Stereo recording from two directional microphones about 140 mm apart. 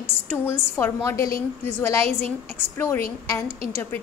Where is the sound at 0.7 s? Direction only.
20° left (ahead or behind).